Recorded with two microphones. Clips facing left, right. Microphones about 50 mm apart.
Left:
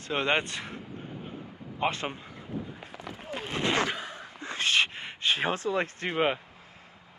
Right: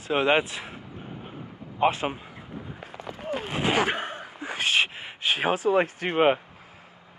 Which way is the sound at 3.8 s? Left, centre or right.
Right.